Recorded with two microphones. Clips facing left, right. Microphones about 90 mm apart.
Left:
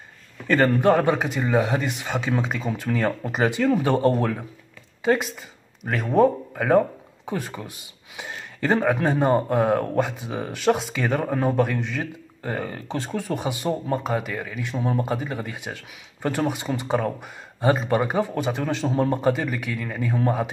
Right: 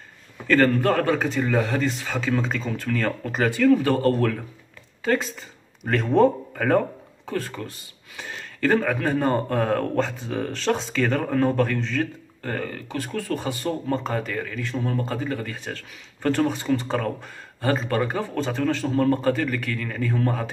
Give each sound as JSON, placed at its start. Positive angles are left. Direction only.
{"t": 0.5, "sound": "speech", "side_deg": 20}